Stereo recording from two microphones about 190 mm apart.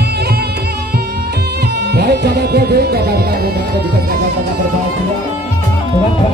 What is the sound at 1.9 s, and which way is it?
Music, 60° right (ahead or behind).